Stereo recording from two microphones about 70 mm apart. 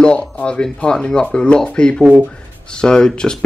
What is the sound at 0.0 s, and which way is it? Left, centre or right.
Speech, centre.